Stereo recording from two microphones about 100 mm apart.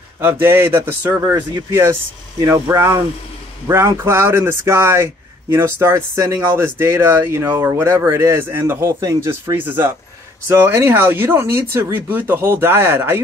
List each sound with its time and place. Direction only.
0.2 s speech: 25° right (ahead or behind)